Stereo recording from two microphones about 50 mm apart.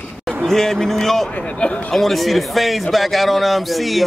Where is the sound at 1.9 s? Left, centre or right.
Centre.